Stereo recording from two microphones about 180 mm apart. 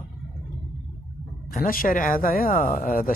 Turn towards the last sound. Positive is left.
turn(degrees=50)  # may be behind; listen again after turning